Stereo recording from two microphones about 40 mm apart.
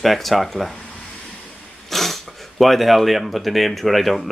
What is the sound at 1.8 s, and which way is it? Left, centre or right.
Speech, centre.